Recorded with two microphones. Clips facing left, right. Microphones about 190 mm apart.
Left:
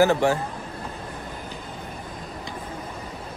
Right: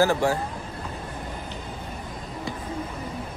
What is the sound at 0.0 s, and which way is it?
Speech, 25° left (ahead or behind).